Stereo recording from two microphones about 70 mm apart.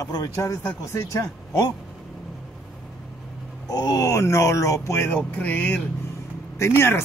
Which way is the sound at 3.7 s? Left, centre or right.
Left.